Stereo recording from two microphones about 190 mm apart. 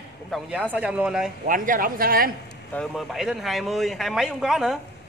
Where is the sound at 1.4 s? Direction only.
45° right (ahead or behind).